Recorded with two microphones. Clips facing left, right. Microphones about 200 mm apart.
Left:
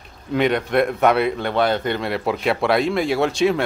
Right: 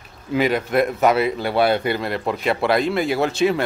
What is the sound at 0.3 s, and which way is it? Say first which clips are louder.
Speech: even; 5° right (ahead or behind).